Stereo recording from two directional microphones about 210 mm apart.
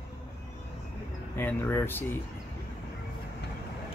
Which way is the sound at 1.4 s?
10° left (ahead or behind).